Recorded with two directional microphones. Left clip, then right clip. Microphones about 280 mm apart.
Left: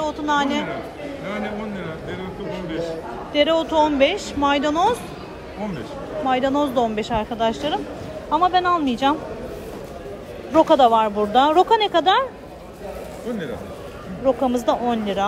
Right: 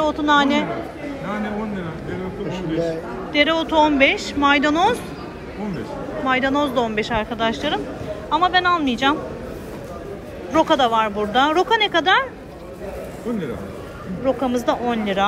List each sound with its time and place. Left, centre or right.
0.0 s a man's voice: centre
2.5 s a man's voice: right
3.3 s speech: centre
6.2 s speech: centre
10.5 s speech: centre
14.2 s speech: centre